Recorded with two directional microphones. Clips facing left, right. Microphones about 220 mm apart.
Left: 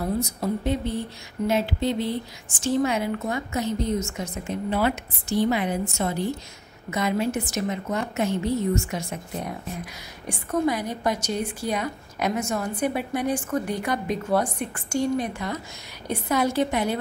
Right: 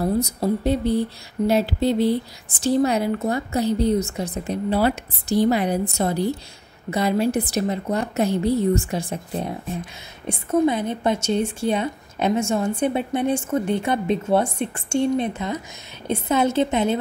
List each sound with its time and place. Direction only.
0.0 s a woman's voice: 35° right (ahead or behind)